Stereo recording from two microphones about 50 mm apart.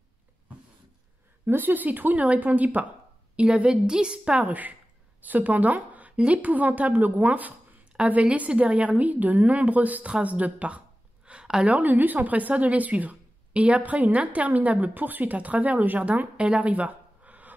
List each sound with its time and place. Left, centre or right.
1.4 s a woman's voice: right; by 4.5 s centre
4.5 s a woman's voice: right
11.2 s a sound: centre
11.7 s speech: right